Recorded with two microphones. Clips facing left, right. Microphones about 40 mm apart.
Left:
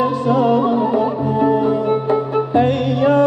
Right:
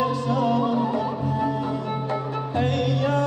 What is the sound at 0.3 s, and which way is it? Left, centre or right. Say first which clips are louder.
Music: left 9 dB; left.